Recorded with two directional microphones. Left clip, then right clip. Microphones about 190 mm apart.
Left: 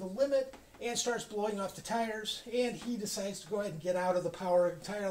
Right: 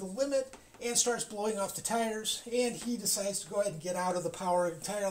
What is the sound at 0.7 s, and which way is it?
Speech, 30° right (ahead or behind).